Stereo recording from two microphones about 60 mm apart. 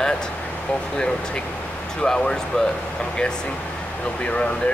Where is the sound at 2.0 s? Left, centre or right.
Centre.